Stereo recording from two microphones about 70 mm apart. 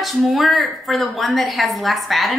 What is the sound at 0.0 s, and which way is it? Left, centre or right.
A woman's voice, centre.